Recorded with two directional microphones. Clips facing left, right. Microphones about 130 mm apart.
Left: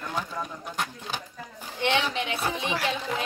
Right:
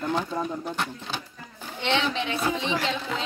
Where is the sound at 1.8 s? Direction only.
10° left (ahead or behind).